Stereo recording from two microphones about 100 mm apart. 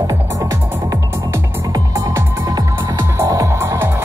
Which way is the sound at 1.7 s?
35° right (ahead or behind).